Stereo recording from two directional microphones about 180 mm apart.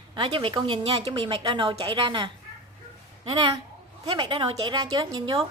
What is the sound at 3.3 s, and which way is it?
A woman's voice, 20° right (ahead or behind).